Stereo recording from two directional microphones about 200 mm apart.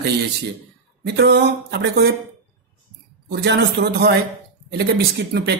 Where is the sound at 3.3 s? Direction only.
55° right (ahead or behind).